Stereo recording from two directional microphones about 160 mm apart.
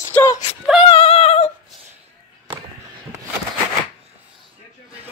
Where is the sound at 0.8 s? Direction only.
35° left (ahead or behind).